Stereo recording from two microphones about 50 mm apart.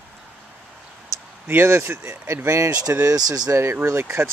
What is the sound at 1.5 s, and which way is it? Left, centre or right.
Speech, right.